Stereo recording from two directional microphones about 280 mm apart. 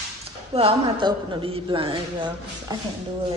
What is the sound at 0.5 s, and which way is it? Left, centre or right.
Speech, centre.